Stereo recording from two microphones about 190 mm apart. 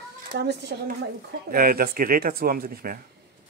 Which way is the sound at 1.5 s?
50° right (ahead or behind).